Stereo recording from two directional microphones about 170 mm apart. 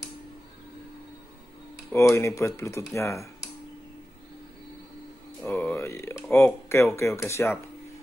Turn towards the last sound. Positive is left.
turn(degrees=15)  # may be behind; listen again after turning